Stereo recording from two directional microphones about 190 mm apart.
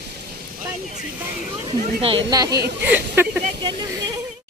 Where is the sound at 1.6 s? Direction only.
30° right (ahead or behind).